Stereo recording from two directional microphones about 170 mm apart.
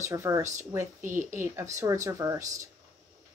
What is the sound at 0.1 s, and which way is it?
Speech, 15° right (ahead or behind).